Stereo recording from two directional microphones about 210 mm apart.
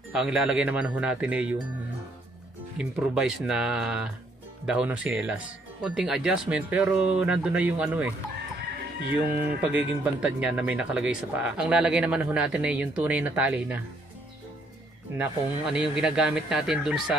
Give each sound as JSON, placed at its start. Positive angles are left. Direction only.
{"t": 0.1, "sound": "speech", "side_deg": -5}
{"t": 2.8, "sound": "speech", "side_deg": -5}
{"t": 9.1, "sound": "speech", "side_deg": -10}
{"t": 15.7, "sound": "speech", "side_deg": -5}